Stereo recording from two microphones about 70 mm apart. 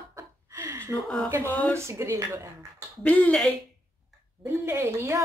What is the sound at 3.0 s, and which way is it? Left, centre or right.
Speech, left.